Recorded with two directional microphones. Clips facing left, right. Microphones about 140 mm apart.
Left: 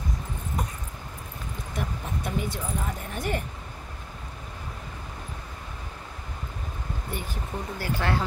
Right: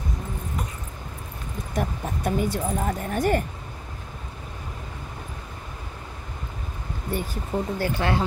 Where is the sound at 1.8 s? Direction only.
45° right (ahead or behind).